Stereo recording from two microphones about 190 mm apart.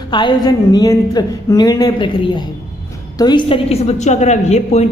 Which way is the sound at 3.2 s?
25° left (ahead or behind).